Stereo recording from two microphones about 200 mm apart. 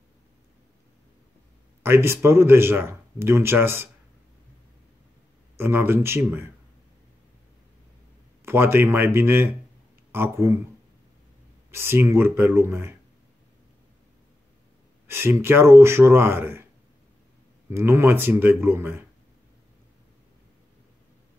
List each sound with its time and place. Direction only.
1.8 s speech: 10° right (ahead or behind)
5.6 s speech: 10° right (ahead or behind)
8.5 s speech: 10° right (ahead or behind)
11.7 s speech: 10° right (ahead or behind)
15.0 s speech: 10° right (ahead or behind)
17.6 s speech: 10° right (ahead or behind)